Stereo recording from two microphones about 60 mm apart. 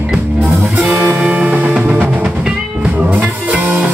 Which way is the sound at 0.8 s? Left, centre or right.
Right.